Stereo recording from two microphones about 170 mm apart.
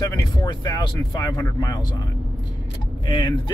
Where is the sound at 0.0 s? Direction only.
20° left (ahead or behind).